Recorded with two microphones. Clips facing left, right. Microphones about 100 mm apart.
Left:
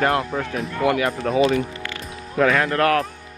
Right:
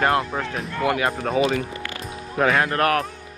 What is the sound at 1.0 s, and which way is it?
Speech, 35° right (ahead or behind).